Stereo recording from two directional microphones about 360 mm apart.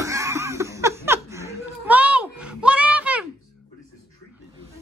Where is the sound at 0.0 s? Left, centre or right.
Centre.